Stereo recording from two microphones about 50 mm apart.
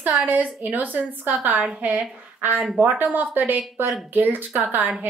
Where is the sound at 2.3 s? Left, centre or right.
Right.